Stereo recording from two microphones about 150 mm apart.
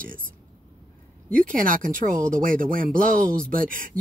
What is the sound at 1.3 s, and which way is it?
Speech, 65° right (ahead or behind).